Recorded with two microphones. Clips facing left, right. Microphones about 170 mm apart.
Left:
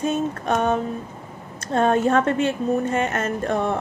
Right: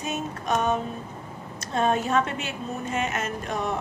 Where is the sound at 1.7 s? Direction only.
55° left (ahead or behind).